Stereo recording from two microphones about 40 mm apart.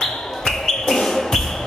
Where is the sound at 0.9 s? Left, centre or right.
Centre.